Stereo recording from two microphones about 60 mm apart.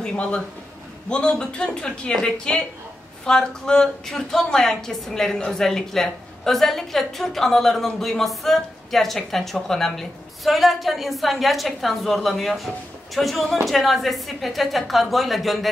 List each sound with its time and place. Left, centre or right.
0.0 s a woman's voice: centre